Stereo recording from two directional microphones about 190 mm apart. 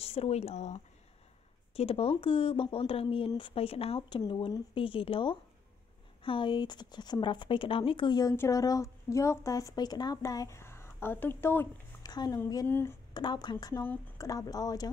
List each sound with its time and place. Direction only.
0.0 s speech: 35° left (ahead or behind); by 12.9 s 10° left (ahead or behind)
13.1 s speech: 20° left (ahead or behind)